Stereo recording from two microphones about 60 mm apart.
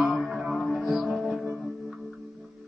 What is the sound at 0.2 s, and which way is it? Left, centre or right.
Music, centre.